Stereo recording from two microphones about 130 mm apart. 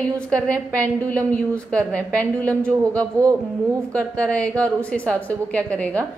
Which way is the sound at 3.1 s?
25° right (ahead or behind).